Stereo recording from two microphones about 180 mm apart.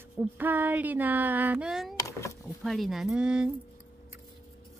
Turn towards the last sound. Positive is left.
turn(degrees=-5)  # may be behind; listen again after turning